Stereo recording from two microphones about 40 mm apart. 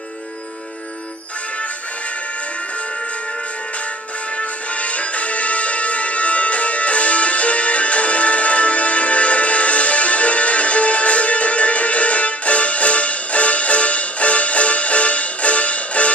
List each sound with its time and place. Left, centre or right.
4.4 s music: left